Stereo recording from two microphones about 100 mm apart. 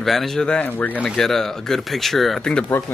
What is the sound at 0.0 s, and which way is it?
Speech, centre (ahead or behind).